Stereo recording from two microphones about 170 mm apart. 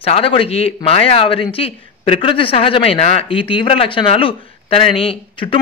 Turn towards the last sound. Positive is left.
turn(degrees=30)  # may be behind; listen again after turning